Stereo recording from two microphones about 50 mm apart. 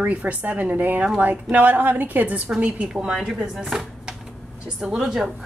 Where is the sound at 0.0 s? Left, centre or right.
Right.